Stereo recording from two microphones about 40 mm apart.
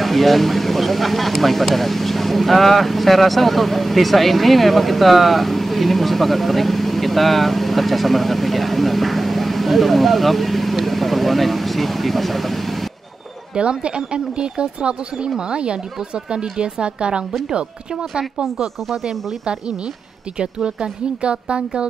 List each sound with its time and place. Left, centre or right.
0.0 s speech: centre
13.6 s speech: right
20.3 s speech: right